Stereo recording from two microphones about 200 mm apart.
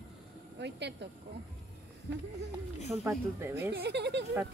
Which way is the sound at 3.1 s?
10° right (ahead or behind).